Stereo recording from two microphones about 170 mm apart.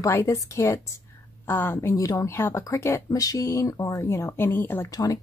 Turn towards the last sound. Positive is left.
turn(degrees=20)  # may be behind; listen again after turning